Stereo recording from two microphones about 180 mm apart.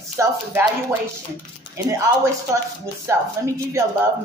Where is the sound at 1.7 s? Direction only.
15° right (ahead or behind).